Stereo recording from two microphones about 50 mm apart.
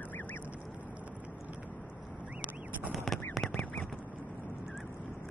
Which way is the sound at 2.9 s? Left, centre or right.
Centre.